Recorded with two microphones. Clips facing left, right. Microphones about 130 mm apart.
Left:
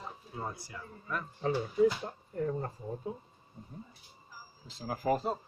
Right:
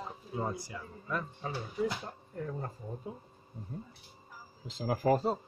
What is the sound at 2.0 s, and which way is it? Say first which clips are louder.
Speech: left 5 dB; 5° left (ahead or behind).